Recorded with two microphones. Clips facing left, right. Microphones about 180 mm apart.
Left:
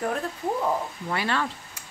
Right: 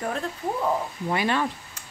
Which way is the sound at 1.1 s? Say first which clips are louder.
Right 3 dB; 15° right (ahead or behind).